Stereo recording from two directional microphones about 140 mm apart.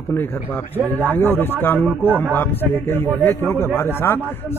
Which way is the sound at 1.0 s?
15° left (ahead or behind).